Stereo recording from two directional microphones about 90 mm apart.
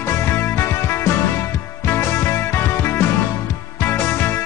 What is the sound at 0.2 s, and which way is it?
Music, 25° left (ahead or behind).